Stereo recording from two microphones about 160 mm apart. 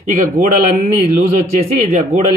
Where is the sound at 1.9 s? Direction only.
50° right (ahead or behind).